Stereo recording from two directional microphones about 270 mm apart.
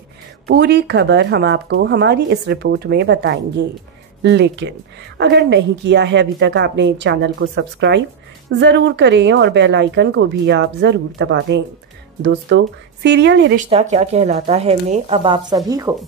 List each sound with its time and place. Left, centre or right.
0.5 s speech: right
13.7 s speech: right